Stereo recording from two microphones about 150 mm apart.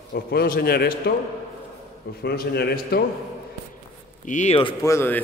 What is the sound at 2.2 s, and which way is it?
Speech, 90° left.